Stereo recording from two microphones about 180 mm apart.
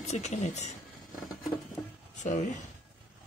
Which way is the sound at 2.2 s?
45° left (ahead or behind).